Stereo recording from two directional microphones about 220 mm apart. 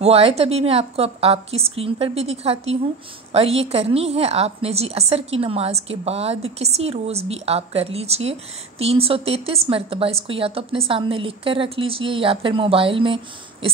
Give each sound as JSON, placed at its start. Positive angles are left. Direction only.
{"t": 0.0, "sound": "a woman's voice", "side_deg": -30}